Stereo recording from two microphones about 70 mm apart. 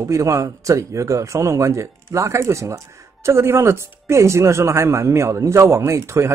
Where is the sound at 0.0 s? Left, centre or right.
Right.